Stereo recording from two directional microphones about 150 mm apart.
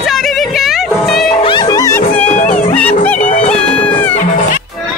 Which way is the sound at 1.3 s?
30° left (ahead or behind).